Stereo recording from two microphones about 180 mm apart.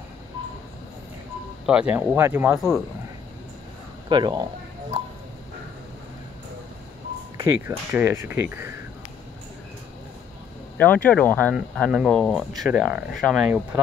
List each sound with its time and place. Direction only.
1.7 s speech: 5° right (ahead or behind)
4.1 s speech: 25° right (ahead or behind)
7.3 s speech: 15° right (ahead or behind)
10.8 s speech: 10° left (ahead or behind)
11.5 s speech: 5° right (ahead or behind)